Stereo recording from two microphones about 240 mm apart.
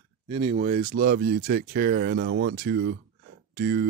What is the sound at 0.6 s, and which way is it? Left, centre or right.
Speech, right.